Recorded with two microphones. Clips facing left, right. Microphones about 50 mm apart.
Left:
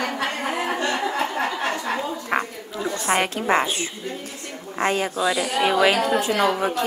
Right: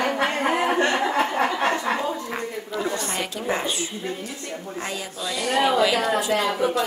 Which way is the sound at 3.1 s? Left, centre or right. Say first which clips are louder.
Left 6 dB; left.